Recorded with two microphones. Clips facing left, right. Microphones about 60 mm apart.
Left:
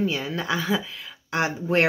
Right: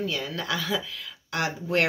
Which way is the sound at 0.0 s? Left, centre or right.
Left.